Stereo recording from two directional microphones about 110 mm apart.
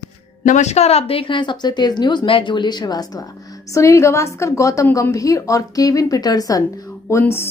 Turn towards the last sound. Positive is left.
turn(degrees=20)  # may be behind; listen again after turning